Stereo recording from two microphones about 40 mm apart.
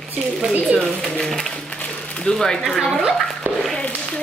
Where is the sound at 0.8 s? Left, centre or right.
Centre.